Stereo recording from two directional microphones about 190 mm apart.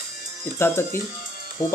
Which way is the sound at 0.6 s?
15° left (ahead or behind).